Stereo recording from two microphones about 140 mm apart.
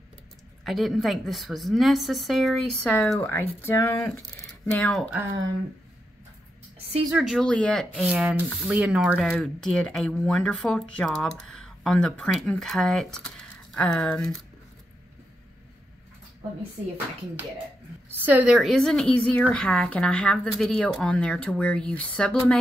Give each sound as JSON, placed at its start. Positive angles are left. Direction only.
{"t": 0.7, "sound": "a woman's voice", "side_deg": 0}
{"t": 7.1, "sound": "a woman's voice", "side_deg": 0}
{"t": 18.0, "sound": "a woman's voice", "side_deg": -15}